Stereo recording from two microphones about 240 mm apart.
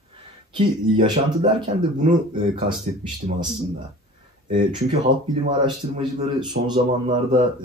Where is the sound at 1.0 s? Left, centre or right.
Centre.